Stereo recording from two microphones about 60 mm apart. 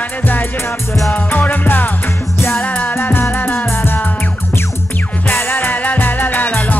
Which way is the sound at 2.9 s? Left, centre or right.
Left.